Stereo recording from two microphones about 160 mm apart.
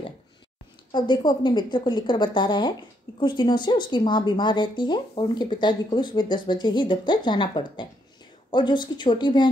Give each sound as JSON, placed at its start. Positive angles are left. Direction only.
{"t": 0.9, "sound": "a woman's voice", "side_deg": 30}